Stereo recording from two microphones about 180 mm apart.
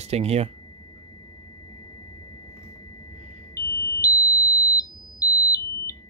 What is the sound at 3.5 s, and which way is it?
Alarm, 15° left (ahead or behind).